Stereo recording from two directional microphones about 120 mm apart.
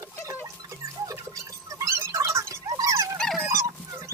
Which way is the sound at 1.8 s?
25° right (ahead or behind).